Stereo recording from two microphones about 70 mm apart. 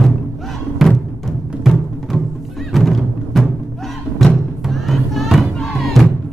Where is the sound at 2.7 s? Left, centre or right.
Centre.